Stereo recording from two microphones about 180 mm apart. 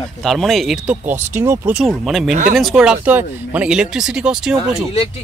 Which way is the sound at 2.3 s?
50° right (ahead or behind).